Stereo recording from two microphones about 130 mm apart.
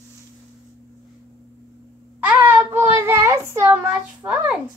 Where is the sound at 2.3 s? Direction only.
15° right (ahead or behind).